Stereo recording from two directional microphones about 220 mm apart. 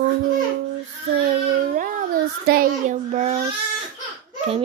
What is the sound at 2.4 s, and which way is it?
Child singing, 40° right (ahead or behind).